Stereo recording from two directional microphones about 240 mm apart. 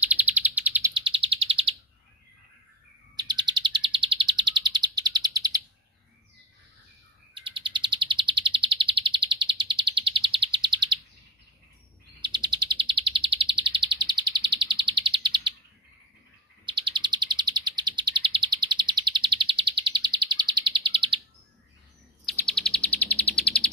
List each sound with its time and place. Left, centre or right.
0.0 s bird: centre
0.9 s bird: right
3.2 s chirp: centre
7.3 s chirp: centre
12.2 s bird: centre
16.6 s bird: centre
22.2 s chirp: centre